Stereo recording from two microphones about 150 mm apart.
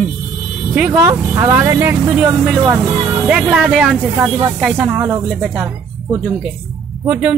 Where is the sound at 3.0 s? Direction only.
25° right (ahead or behind).